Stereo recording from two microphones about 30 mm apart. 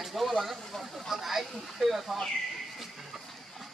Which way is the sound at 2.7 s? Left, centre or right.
Centre.